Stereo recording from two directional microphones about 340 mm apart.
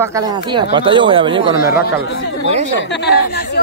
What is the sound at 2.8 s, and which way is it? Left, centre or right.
Speech, left.